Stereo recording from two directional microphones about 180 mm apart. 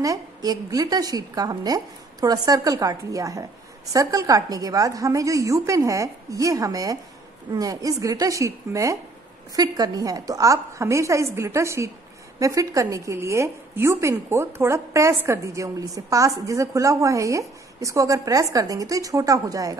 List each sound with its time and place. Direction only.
0.0 s a woman's voice: 20° right (ahead or behind)